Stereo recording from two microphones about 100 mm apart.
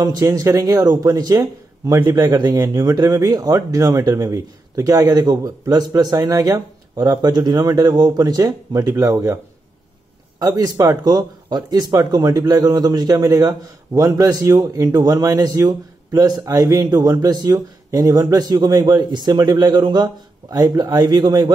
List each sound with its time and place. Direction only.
0.0 s speech: 35° right (ahead or behind)
10.4 s speech: 40° right (ahead or behind)